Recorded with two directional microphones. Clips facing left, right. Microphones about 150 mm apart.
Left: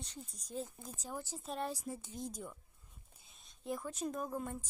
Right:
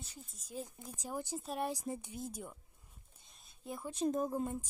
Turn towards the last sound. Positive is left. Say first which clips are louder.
# right 5 dB
turn(degrees=-25)  # may be behind; listen again after turning